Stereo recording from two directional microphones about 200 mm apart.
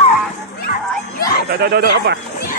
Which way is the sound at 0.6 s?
50° left (ahead or behind).